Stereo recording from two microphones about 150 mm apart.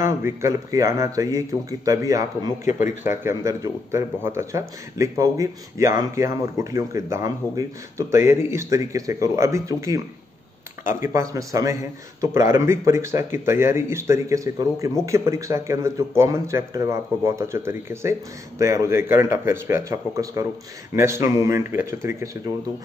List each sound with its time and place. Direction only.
0.0 s speech: 20° right (ahead or behind)
2.6 s speech: 55° left (ahead or behind)
3.1 s a man's voice: 20° right (ahead or behind)